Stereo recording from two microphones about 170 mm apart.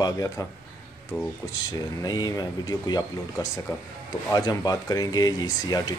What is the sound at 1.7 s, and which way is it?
Speech, 25° left (ahead or behind).